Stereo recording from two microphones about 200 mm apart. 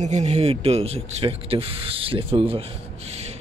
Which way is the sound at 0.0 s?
35° right (ahead or behind).